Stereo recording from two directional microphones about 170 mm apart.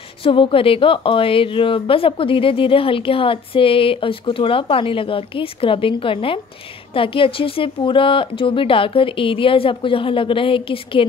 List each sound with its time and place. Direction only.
0.2 s a woman's voice: 30° left (ahead or behind)